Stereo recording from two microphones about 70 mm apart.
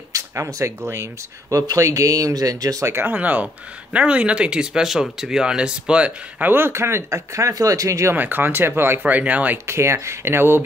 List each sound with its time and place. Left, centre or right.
0.1 s speech: right
2.9 s speech: right
6.5 s speech: right
8.1 s speech: right
9.7 s speech: right